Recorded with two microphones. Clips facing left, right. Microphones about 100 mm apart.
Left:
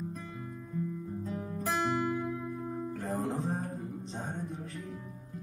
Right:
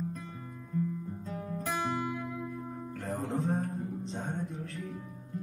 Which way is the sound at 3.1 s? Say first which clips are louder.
Right 2 dB; 15° left (ahead or behind).